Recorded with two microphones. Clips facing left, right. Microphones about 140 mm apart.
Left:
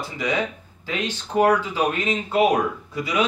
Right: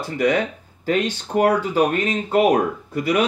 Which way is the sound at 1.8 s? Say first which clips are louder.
Right 4 dB; 45° right (ahead or behind).